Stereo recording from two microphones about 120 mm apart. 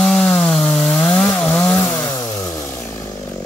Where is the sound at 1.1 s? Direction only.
15° left (ahead or behind).